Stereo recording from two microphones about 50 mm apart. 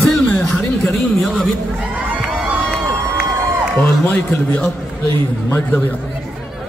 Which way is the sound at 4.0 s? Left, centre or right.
Left.